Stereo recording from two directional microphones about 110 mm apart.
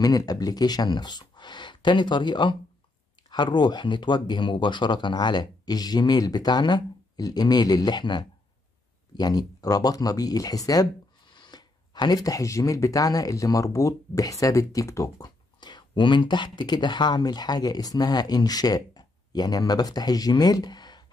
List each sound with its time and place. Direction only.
0.0 s speech: 35° left (ahead or behind)